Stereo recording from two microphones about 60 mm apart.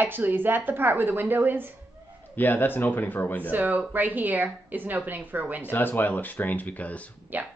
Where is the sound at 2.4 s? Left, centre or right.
Left.